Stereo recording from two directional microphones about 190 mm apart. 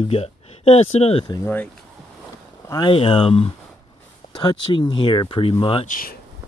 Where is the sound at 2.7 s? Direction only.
25° left (ahead or behind).